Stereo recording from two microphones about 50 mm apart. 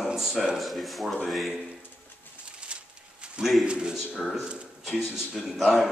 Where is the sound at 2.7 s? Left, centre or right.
Centre.